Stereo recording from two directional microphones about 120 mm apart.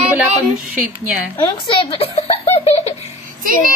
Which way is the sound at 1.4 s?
35° left (ahead or behind).